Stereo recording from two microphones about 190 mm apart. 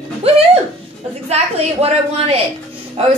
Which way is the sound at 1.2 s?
35° right (ahead or behind).